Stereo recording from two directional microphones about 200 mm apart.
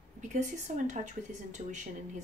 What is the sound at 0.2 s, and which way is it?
Speech, 40° right (ahead or behind).